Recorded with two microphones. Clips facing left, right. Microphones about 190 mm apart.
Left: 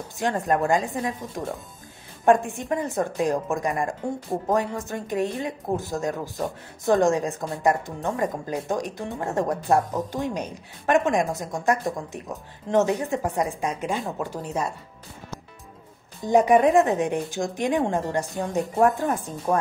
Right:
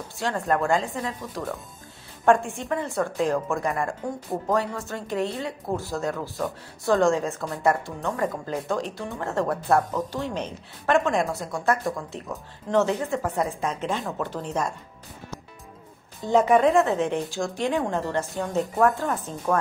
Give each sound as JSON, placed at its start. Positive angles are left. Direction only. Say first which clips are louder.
{"t": 0.2, "sound": "a woman's voice", "louder": "left 2 dB", "side_deg": 20}
{"t": 16.2, "sound": "a woman's voice", "louder": "left 1 dB", "side_deg": 15}